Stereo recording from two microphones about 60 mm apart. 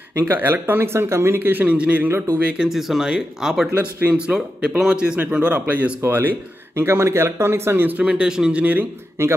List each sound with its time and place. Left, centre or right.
0.2 s speech: right
1.7 s speech: right
2.6 s speech: centre; by 6.1 s right
6.8 s speech: right
8.0 s speech: centre
9.2 s speech: right